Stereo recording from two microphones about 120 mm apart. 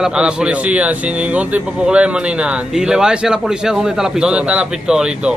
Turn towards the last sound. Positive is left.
turn(degrees=-5)  # may be behind; listen again after turning